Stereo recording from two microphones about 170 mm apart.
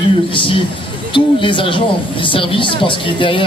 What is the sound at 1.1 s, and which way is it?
A woman's voice, 30° left (ahead or behind).